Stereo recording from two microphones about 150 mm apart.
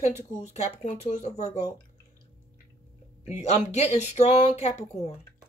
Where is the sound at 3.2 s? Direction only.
45° left (ahead or behind).